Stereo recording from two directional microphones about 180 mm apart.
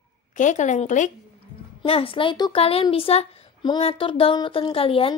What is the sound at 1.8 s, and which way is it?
Speech, 30° left (ahead or behind).